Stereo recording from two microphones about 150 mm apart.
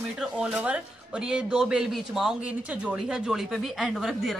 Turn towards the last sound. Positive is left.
turn(degrees=0)  # may be behind; listen again after turning